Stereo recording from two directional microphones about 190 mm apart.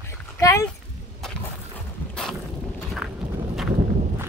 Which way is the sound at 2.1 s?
Centre (ahead or behind).